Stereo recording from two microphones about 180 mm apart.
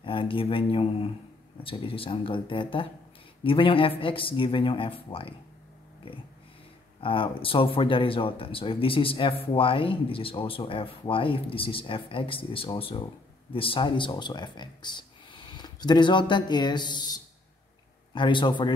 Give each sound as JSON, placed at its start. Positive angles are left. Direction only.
{"t": 0.0, "sound": "speech", "side_deg": 30}
{"t": 7.0, "sound": "speech", "side_deg": 30}